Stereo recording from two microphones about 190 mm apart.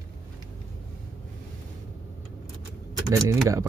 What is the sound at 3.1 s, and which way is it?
Speech, 15° right (ahead or behind).